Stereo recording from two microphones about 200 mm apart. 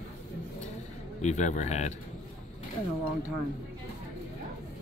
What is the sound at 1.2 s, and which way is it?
Speech, 35° left (ahead or behind).